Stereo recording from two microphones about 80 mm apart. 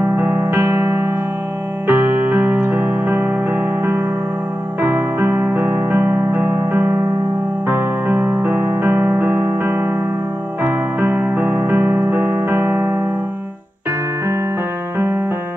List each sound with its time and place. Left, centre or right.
0.1 s music: right